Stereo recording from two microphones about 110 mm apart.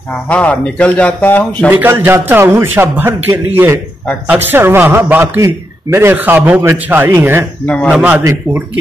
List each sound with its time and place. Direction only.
0.3 s speech: 10° left (ahead or behind)
1.7 s a man's voice: 15° right (ahead or behind)
7.6 s speech: 10° left (ahead or behind)
7.9 s a man's voice: 15° right (ahead or behind)